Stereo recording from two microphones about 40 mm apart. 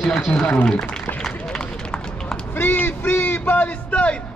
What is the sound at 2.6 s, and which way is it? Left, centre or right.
Speech, left.